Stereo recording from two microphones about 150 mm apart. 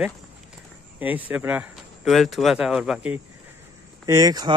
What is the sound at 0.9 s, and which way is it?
Speech, 10° right (ahead or behind).